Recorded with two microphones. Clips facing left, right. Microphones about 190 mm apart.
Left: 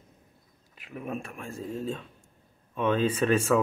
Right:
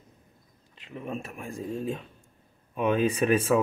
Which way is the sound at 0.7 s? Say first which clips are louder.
Even; 5° left (ahead or behind).